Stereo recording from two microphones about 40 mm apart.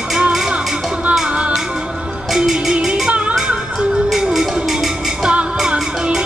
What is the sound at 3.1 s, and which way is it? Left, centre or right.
Music, right.